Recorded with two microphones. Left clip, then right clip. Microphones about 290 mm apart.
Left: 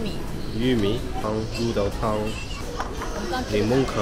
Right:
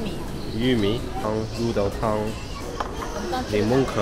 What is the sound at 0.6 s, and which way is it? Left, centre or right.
Speech, centre.